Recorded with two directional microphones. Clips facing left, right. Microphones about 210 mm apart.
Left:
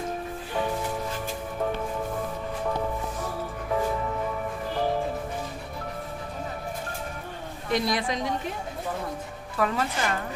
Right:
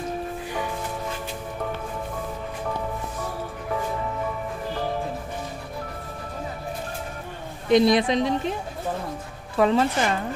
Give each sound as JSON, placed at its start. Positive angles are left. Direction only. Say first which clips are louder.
{"t": 7.7, "sound": "a woman's voice", "louder": "right 9 dB", "side_deg": -25}
{"t": 9.6, "sound": "a woman's voice", "louder": "right 7 dB", "side_deg": -25}